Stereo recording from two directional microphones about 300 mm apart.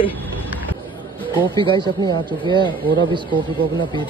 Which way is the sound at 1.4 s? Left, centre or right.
Centre.